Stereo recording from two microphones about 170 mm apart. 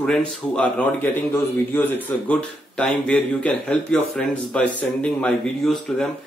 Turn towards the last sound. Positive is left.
turn(degrees=5)  # may be behind; listen again after turning